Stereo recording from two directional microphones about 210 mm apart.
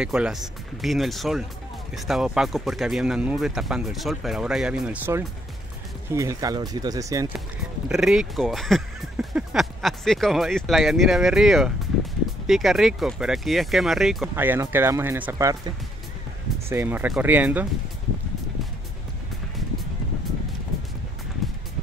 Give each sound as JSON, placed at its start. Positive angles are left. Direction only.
{"t": 0.0, "sound": "speech", "side_deg": -5}
{"t": 7.9, "sound": "speech", "side_deg": 0}